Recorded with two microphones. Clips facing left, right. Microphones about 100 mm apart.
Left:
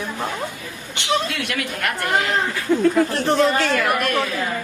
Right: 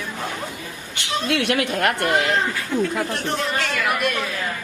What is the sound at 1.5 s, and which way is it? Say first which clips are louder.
Speech: right 5 dB; 25° right (ahead or behind).